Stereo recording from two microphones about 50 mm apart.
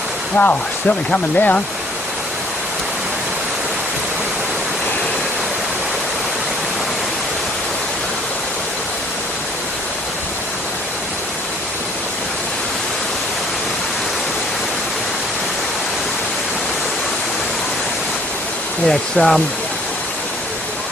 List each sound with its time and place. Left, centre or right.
0.4 s speech: left
18.9 s speech: centre